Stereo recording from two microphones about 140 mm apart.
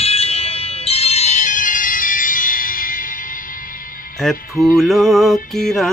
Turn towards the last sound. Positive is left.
turn(degrees=0)  # may be behind; listen again after turning